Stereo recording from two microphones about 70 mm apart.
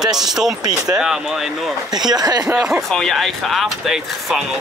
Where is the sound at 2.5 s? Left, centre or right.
Centre.